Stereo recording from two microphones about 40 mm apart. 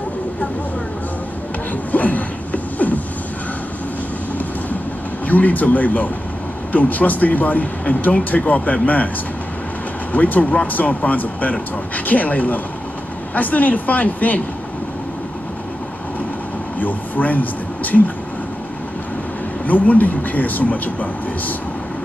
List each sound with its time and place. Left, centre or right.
1.7 s a sound: left
5.3 s a man's voice: left
10.1 s a man's voice: left
16.8 s speech: left
19.6 s a man's voice: left